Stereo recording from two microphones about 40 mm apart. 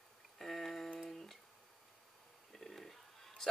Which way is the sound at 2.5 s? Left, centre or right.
Centre.